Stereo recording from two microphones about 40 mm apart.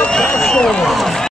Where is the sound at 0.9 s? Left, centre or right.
Centre.